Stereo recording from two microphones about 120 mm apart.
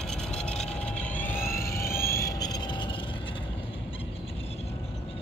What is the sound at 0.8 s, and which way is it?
Vehicle, 10° left (ahead or behind).